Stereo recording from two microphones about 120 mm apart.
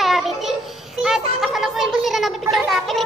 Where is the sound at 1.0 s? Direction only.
Centre (ahead or behind).